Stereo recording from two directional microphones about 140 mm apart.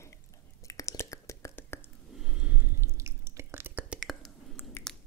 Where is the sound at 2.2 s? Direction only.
5° right (ahead or behind).